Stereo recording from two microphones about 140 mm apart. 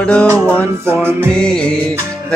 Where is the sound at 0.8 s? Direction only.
15° right (ahead or behind).